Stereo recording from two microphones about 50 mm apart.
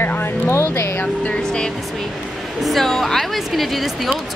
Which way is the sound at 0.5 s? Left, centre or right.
Left.